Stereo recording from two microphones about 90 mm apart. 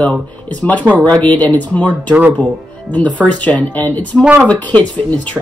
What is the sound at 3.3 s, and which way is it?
Speech, 15° left (ahead or behind).